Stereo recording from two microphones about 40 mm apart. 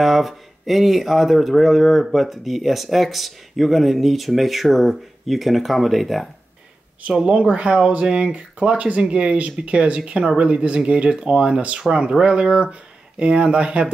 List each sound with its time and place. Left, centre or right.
0.0 s speech: centre
7.2 s speech: right